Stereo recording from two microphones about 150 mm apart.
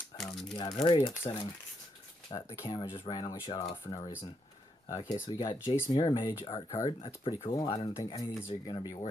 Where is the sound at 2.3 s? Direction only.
35° left (ahead or behind).